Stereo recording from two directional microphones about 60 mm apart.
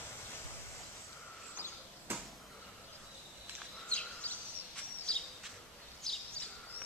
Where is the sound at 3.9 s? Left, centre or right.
Left.